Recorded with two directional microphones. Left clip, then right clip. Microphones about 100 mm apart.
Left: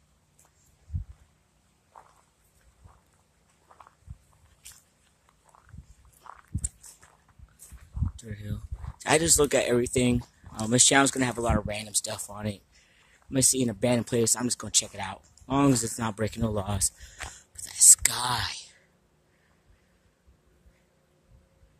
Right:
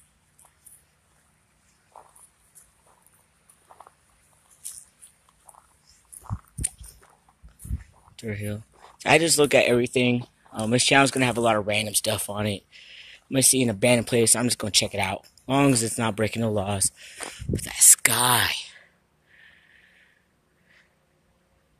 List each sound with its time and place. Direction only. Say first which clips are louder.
8.2 s speech: right 11 dB; 15° left (ahead or behind)
17.5 s speech: right 1 dB; centre (ahead or behind)